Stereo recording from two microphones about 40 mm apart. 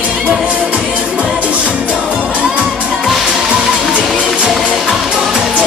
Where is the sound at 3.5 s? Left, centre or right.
Right.